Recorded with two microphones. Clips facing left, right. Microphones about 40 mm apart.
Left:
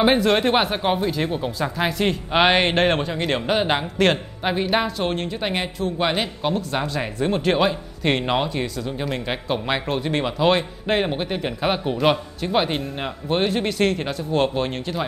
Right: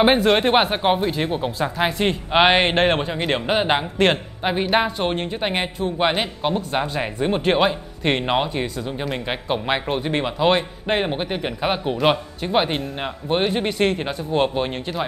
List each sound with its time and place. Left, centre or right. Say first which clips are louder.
0.0 s speech: right 1 dB; centre